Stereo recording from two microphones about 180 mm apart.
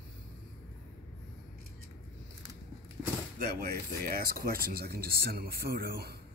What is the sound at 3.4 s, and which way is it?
Speech, 60° right (ahead or behind).